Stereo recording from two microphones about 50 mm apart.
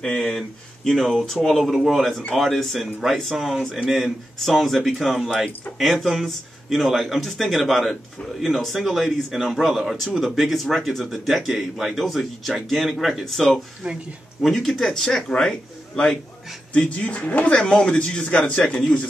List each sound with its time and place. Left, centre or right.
0.0 s speech: left
0.3 s speech: centre
13.8 s speech: centre
14.4 s speech: centre; by 17.5 s left
17.5 s speech: centre